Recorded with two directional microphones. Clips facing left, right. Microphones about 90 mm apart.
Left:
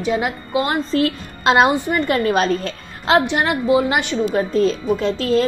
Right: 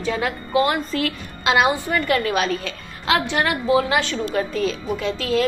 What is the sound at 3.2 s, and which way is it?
Speech, 20° left (ahead or behind).